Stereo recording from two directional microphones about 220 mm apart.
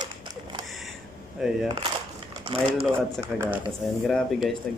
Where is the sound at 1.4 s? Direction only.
Centre (ahead or behind).